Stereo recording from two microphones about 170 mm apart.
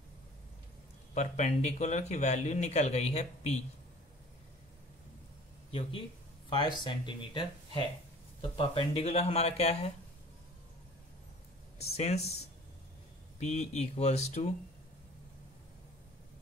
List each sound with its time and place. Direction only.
1.1 s speech: 45° left (ahead or behind)
5.7 s speech: 30° left (ahead or behind)
11.8 s speech: 40° left (ahead or behind)
13.4 s speech: 40° left (ahead or behind)